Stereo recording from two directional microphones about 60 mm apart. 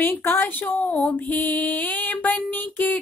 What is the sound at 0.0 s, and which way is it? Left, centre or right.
Speech, left.